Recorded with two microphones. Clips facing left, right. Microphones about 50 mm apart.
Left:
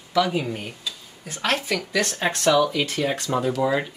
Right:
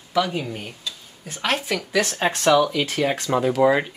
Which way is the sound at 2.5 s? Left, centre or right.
Right.